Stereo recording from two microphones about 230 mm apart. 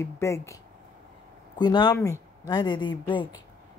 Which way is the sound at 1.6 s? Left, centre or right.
Centre.